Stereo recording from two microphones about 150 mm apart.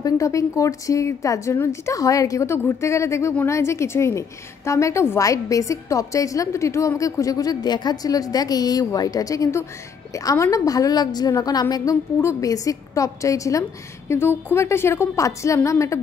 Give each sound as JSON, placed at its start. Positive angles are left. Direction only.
{"t": 0.0, "sound": "a woman's voice", "side_deg": 20}